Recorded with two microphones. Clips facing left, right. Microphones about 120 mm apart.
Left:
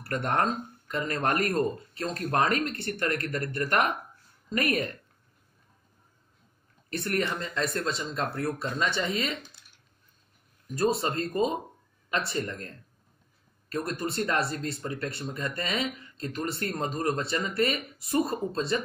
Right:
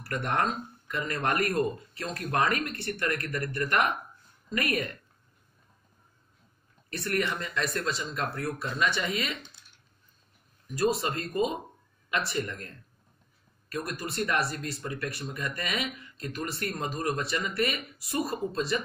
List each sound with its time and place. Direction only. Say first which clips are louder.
0.0 s speech: left 2 dB; 30° left (ahead or behind)
7.0 s speech: left 1 dB; 30° left (ahead or behind)
10.9 s speech: left 2 dB; 30° left (ahead or behind)